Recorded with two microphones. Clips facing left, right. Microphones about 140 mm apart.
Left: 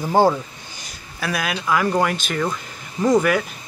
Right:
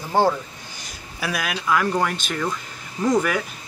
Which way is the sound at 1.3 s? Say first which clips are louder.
Left 1 dB; centre (ahead or behind).